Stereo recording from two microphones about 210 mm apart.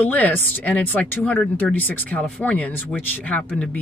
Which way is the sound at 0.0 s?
5° left (ahead or behind).